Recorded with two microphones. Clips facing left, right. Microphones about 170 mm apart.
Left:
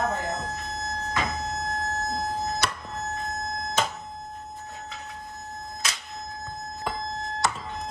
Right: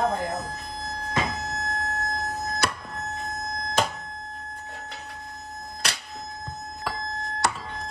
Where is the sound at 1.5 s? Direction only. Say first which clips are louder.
Left 1 dB; 20° left (ahead or behind).